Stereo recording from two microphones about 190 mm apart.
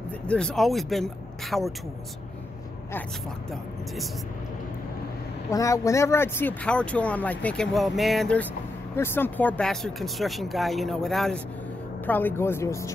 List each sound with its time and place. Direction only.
0.3 s speech: 5° left (ahead or behind)
5.5 s speech: 15° left (ahead or behind)